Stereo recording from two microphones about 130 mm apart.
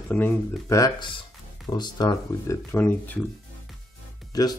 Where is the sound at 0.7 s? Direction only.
25° left (ahead or behind).